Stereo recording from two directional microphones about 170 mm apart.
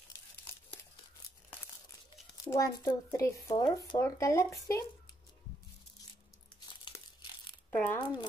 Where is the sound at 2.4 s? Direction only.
20° left (ahead or behind).